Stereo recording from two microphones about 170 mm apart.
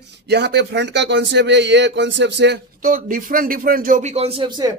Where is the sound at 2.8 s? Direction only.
55° right (ahead or behind); by 4.7 s 25° right (ahead or behind).